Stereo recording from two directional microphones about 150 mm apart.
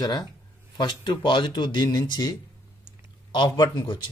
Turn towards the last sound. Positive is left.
turn(degrees=30)  # may be behind; listen again after turning